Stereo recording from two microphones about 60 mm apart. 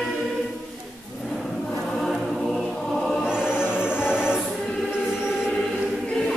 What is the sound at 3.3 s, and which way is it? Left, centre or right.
Music, centre.